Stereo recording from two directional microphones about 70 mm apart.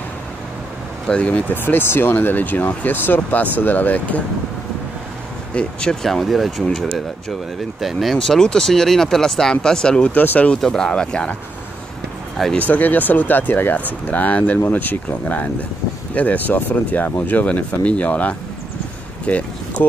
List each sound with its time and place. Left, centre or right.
1.0 s speech: centre
1.5 s speech: left
5.5 s speech: centre
7.8 s speech: centre
10.1 s speech: left
10.5 s speech: centre
12.5 s speech: left
19.2 s a sound: centre